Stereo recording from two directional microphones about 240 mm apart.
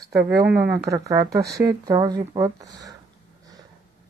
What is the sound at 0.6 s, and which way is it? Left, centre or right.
Speech, centre.